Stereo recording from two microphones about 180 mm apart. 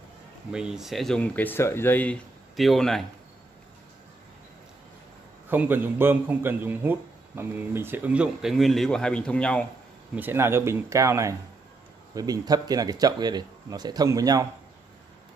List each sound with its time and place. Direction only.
0.5 s speech: 5° right (ahead or behind)
5.5 s a man's voice: 10° right (ahead or behind); by 9.7 s 5° left (ahead or behind)
10.1 s a man's voice: 10° right (ahead or behind)